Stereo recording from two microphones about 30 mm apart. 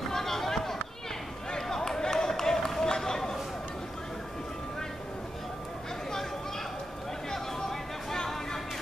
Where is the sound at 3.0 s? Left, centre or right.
Centre.